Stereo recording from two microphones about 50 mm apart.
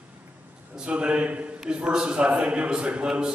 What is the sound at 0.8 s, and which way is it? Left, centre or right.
A man's voice, right.